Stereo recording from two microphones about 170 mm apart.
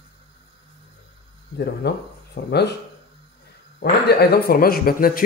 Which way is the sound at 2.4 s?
90° left.